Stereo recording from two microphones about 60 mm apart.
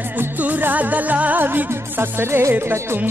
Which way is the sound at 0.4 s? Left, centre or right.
Right.